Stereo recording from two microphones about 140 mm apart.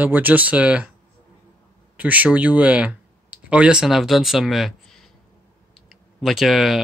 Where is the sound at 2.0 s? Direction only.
10° right (ahead or behind).